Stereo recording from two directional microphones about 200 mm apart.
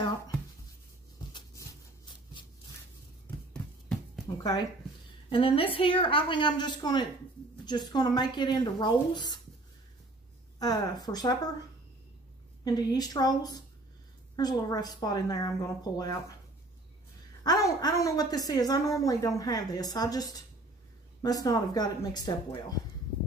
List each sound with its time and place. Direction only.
1.3 s a sound: 15° left (ahead or behind)
4.4 s a woman's voice: 20° left (ahead or behind)
10.6 s a woman's voice: 20° left (ahead or behind)
12.6 s a woman's voice: 20° left (ahead or behind)
17.4 s a woman's voice: 20° left (ahead or behind)